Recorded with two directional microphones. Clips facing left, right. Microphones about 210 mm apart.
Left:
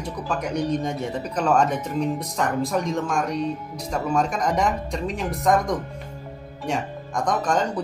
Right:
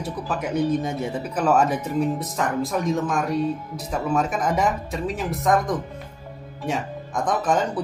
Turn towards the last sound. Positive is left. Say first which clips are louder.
# right 1 dB
turn(degrees=-5)  # may be behind; listen again after turning